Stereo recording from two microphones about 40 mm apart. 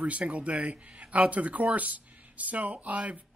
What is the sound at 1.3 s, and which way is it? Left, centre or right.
Speech, right.